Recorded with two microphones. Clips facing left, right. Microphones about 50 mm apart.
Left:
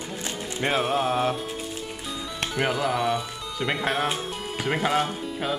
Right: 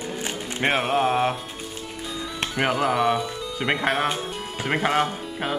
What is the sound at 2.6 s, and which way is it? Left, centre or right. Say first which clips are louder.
Music: right 3 dB; right.